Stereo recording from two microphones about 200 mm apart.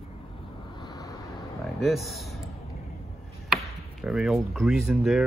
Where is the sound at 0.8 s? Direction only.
20° left (ahead or behind).